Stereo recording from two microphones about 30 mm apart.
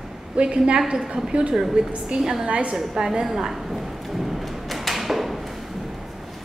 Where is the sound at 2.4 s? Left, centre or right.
Right.